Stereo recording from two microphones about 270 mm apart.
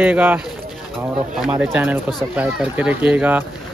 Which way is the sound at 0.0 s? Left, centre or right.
Centre.